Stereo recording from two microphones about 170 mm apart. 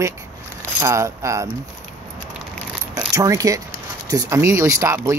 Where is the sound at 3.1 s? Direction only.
20° right (ahead or behind).